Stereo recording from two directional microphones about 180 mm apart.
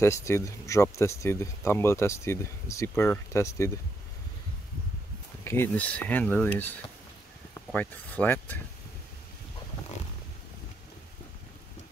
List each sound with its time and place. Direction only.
0.0 s speech: 15° left (ahead or behind)
5.4 s a sound: 15° left (ahead or behind)
5.7 s speech: 10° left (ahead or behind)
7.5 s speech: 10° left (ahead or behind)